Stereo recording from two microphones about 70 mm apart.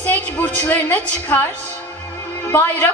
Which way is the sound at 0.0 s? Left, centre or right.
Left.